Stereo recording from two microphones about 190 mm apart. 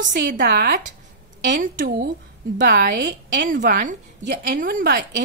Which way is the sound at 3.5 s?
45° right (ahead or behind).